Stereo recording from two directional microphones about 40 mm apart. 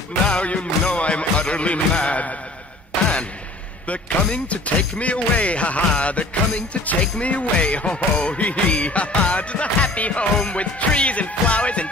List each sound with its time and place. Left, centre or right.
0.3 s music: left
0.9 s speech: left
3.8 s speech: left